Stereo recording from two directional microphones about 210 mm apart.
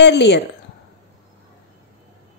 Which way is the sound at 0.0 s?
55° left (ahead or behind).